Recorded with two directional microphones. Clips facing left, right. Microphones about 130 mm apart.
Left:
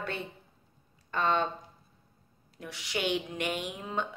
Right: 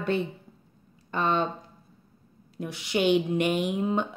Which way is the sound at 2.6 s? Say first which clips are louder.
Right 8 dB; 20° right (ahead or behind).